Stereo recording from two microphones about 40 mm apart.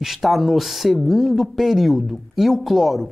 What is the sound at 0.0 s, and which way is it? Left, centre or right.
Speech, centre.